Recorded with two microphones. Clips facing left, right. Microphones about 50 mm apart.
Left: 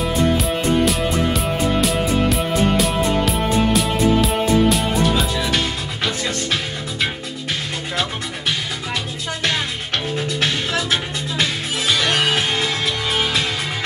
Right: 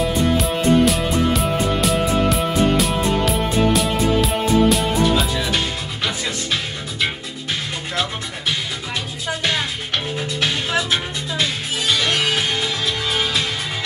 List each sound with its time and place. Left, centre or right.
0.0 s music: centre
10.7 s music: right
12.0 s music: left